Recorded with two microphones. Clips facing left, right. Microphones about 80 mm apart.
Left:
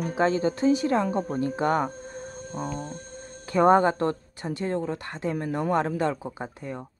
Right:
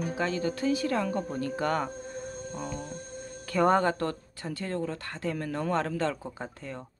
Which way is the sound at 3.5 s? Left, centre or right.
Left.